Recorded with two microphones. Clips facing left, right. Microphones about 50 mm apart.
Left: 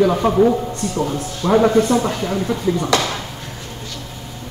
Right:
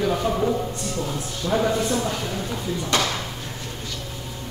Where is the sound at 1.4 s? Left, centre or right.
Left.